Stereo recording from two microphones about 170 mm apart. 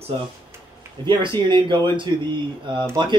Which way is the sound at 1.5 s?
30° right (ahead or behind).